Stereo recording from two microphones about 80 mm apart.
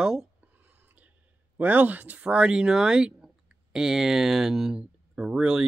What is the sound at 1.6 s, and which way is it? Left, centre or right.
Speech, centre.